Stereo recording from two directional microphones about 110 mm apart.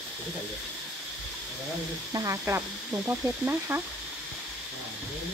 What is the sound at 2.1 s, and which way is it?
Speech, 30° right (ahead or behind).